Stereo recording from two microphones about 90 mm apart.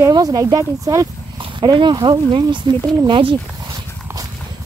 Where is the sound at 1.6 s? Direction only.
55° right (ahead or behind).